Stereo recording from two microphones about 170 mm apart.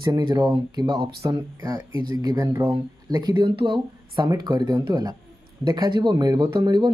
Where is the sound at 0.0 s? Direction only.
20° right (ahead or behind).